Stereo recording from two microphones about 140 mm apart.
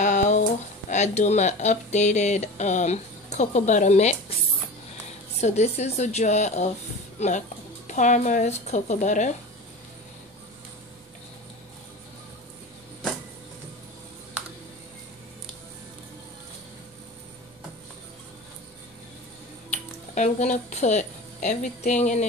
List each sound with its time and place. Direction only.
0.0 s speech: 60° left (ahead or behind)
5.4 s a woman's voice: 55° left (ahead or behind)
19.7 s speech: 55° left (ahead or behind)